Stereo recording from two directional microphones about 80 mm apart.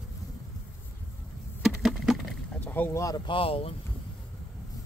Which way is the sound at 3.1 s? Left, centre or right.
Left.